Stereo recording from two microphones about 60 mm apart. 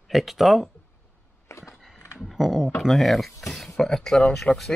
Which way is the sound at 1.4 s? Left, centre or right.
Left.